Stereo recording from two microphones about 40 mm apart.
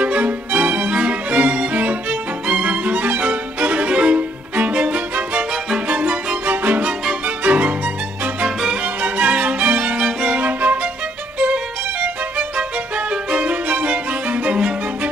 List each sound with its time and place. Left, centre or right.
0.0 s music: right
6.4 s music: right
8.5 s music: centre
8.8 s music: right
9.9 s violin: centre
10.3 s music: right
12.4 s violin: right